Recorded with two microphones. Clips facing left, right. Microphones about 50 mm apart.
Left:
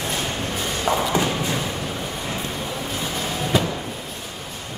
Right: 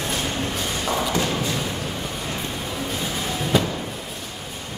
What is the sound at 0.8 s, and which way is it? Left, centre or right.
Thump, centre.